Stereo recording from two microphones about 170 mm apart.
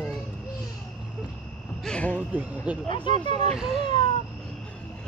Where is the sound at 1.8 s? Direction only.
5° left (ahead or behind).